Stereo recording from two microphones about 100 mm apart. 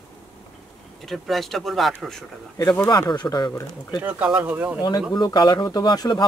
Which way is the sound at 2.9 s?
45° left (ahead or behind).